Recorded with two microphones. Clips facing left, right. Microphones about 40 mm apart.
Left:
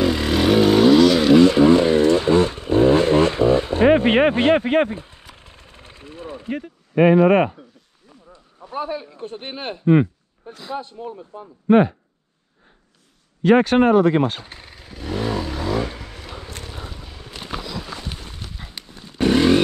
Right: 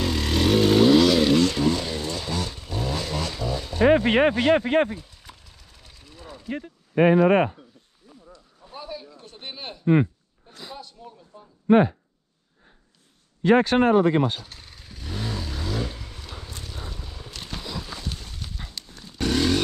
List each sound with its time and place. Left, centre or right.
0.0 s vehicle: centre
1.4 s vehicle: left
8.6 s a man's voice: left
11.6 s speech: centre
13.7 s speech: centre
14.2 s vehicle: left
16.9 s a sound: centre
17.9 s a sound: left